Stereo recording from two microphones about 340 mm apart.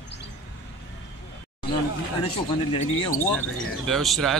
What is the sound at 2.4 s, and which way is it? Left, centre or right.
Speech, centre.